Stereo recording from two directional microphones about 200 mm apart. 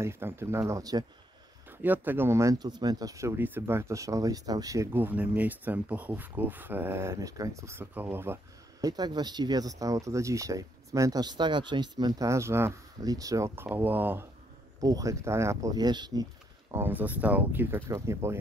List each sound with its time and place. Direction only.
0.0 s speech: 15° right (ahead or behind)
16.7 s speech: 10° right (ahead or behind)